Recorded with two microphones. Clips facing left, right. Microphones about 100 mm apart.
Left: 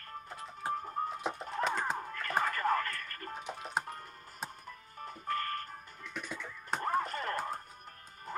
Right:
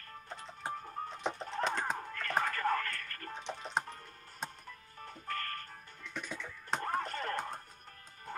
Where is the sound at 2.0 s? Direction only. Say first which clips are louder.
Left 1 dB; 35° left (ahead or behind).